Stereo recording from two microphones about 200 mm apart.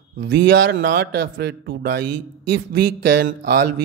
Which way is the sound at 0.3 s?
60° right (ahead or behind).